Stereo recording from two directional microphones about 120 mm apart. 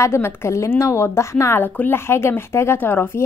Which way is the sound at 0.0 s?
20° left (ahead or behind).